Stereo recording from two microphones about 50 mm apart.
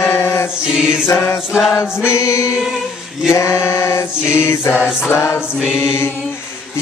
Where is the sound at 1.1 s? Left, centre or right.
Left.